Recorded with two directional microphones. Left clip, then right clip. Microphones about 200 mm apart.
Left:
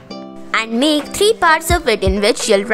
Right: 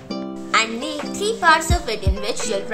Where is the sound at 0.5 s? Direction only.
50° left (ahead or behind).